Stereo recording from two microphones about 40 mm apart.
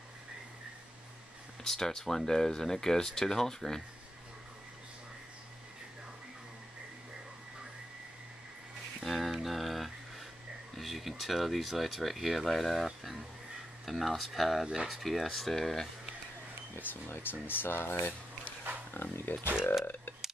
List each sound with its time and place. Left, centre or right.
1.6 s speech: centre
9.0 s music: centre
10.8 s speech: centre
16.7 s speech: left